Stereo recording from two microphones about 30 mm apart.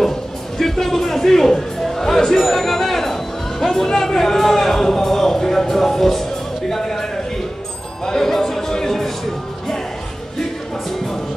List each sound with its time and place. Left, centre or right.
0.6 s music: centre
6.7 s speech: centre
8.0 s music: centre